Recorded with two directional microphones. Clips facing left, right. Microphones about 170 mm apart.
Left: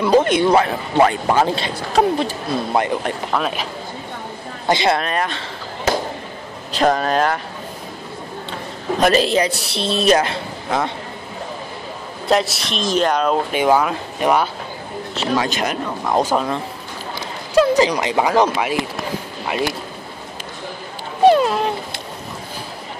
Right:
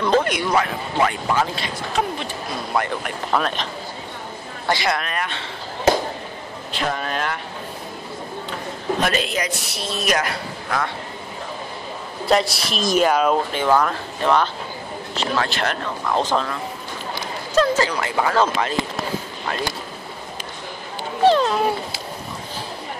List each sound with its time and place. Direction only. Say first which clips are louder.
0.2 s a man's voice: left 6 dB; 25° left (ahead or behind)
3.3 s speech: right 2 dB; 5° left (ahead or behind)
4.6 s speech: left 5 dB; 25° left (ahead or behind)
6.8 s speech: left 9 dB; 40° left (ahead or behind)
9.0 s a man's voice: left 10 dB; 35° left (ahead or behind)
12.3 s speech: left 1 dB; centre (ahead or behind)
13.5 s speech: left 3 dB; 15° left (ahead or behind)
17.6 s speech: left 4 dB; 15° left (ahead or behind)
21.2 s speech: left 3 dB; 10° left (ahead or behind)